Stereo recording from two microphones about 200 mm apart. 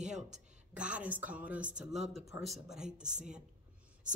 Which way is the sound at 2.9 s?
35° right (ahead or behind).